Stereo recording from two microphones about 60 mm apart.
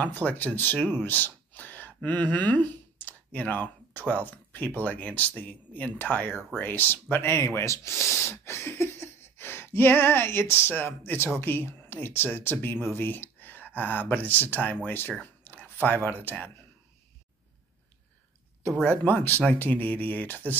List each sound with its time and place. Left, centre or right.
0.0 s speech: left
1.0 s a sound: left
2.0 s speech: left
15.5 s a sound: left
15.8 s speech: left
19.0 s speech: left